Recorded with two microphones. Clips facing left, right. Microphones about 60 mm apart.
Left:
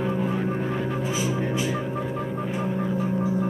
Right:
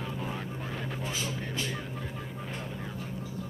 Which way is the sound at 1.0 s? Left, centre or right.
Centre.